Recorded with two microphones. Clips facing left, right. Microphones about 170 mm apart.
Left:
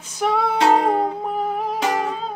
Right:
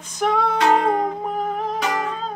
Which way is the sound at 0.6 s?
30° left (ahead or behind).